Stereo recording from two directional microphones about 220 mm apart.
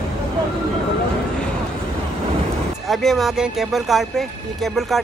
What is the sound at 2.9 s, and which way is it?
Speech, centre (ahead or behind).